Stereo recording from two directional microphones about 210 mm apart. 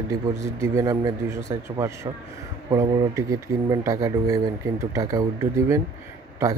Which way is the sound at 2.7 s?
15° right (ahead or behind).